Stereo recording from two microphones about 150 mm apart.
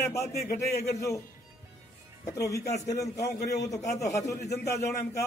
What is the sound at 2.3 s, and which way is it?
Speech, 20° left (ahead or behind).